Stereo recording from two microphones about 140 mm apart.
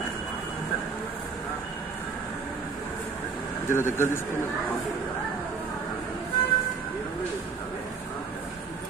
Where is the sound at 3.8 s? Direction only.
20° left (ahead or behind).